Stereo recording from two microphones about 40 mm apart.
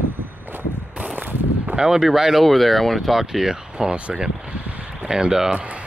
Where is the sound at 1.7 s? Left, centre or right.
Centre.